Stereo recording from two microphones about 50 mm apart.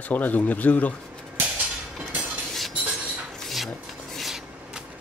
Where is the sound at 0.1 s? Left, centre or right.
Left.